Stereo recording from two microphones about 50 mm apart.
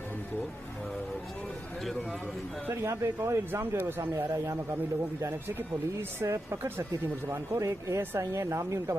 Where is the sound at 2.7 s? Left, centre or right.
Right.